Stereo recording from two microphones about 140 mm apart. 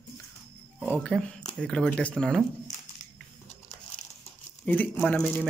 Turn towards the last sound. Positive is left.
turn(degrees=10)  # may be behind; listen again after turning